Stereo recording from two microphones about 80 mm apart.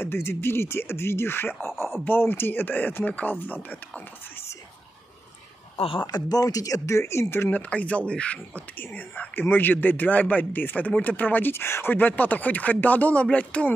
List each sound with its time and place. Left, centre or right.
0.0 s speech: left
5.9 s speech: left
7.7 s speech: centre